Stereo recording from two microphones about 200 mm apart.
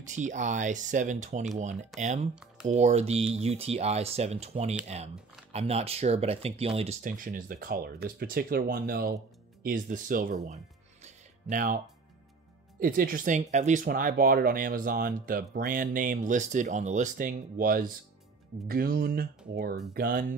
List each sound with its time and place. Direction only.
0.0 s speech: 40° right (ahead or behind)
12.8 s speech: 45° right (ahead or behind)